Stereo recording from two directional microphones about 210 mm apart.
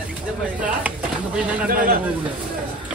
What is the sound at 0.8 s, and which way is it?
Pigeon, 5° right (ahead or behind).